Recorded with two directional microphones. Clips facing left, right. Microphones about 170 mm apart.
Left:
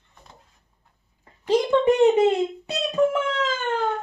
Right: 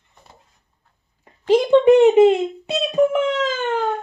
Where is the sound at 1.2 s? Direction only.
20° right (ahead or behind).